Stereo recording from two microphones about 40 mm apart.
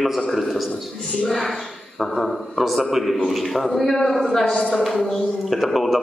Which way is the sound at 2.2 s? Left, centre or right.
Centre.